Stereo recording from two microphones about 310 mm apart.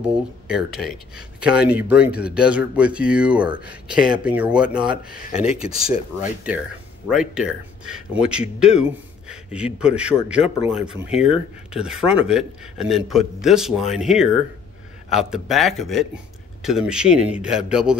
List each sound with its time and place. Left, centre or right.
0.0 s speech: centre